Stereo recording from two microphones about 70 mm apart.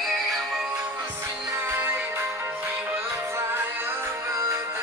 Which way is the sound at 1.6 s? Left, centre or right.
Right.